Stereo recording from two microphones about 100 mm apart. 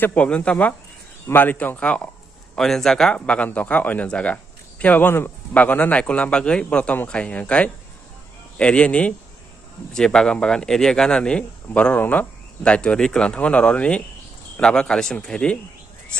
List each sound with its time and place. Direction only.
0.0 s speech: 15° left (ahead or behind)